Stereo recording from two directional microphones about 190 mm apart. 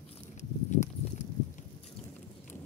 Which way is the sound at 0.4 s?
40° left (ahead or behind).